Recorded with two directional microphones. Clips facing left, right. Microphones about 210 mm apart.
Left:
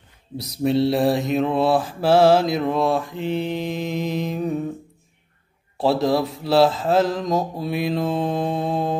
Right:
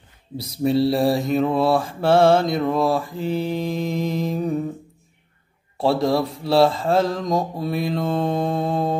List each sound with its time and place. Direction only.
0.4 s mantra: centre (ahead or behind)
5.8 s mantra: centre (ahead or behind)